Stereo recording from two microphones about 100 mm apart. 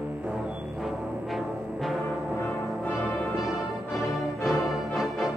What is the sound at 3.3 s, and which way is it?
Music, centre (ahead or behind).